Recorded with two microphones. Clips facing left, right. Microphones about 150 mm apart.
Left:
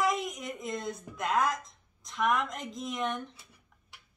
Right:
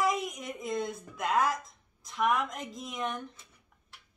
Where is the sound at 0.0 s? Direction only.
Centre (ahead or behind).